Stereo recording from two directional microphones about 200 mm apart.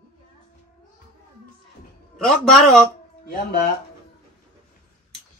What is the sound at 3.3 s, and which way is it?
Speech, 45° left (ahead or behind).